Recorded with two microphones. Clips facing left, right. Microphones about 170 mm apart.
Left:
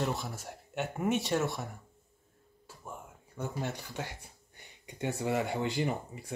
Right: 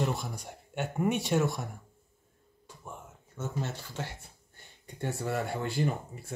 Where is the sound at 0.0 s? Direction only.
Centre (ahead or behind).